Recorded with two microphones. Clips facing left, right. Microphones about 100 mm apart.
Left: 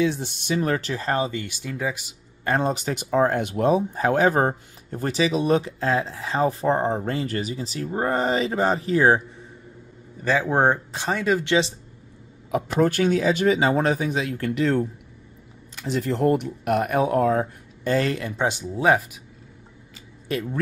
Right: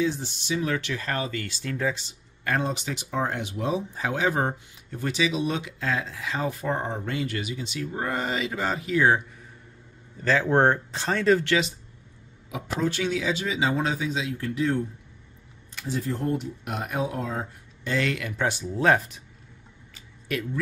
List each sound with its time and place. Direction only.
0.0 s speech: 60° left (ahead or behind); by 2.1 s 10° left (ahead or behind)
2.6 s speech: 45° left (ahead or behind)
10.2 s speech: 15° left (ahead or behind)
12.4 s speech: 50° left (ahead or behind)
17.9 s speech: 35° left (ahead or behind)
18.4 s speech: 15° left (ahead or behind)
20.3 s speech: 30° left (ahead or behind)